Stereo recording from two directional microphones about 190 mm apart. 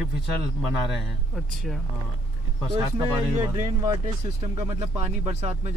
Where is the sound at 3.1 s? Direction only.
15° right (ahead or behind).